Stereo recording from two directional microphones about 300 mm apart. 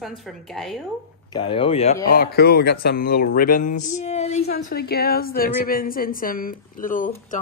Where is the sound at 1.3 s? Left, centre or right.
Centre.